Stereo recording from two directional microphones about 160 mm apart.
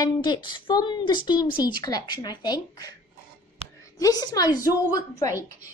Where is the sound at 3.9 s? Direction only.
25° left (ahead or behind).